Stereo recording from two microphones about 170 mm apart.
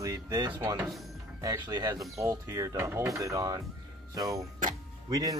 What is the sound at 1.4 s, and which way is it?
Speech, 20° right (ahead or behind).